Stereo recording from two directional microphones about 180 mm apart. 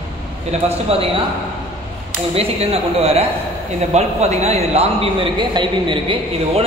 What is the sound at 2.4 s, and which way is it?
A man's voice, 35° right (ahead or behind).